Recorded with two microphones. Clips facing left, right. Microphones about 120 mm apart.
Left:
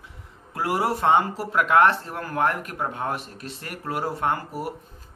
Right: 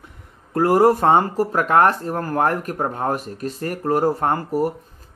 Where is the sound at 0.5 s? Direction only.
45° right (ahead or behind).